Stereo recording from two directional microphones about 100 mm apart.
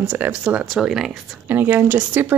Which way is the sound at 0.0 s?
10° right (ahead or behind).